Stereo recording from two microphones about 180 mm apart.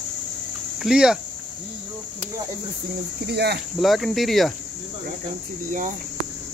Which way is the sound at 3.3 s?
65° right (ahead or behind).